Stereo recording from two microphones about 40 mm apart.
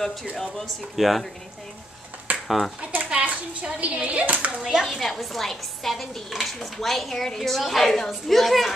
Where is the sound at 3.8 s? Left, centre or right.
Right.